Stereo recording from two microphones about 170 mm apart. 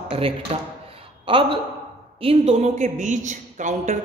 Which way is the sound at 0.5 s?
40° right (ahead or behind).